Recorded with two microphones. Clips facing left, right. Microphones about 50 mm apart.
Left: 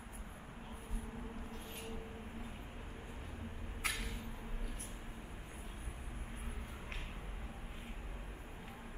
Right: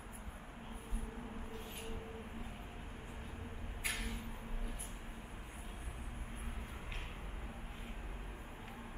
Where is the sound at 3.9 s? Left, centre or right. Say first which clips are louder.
Right 1 dB; right.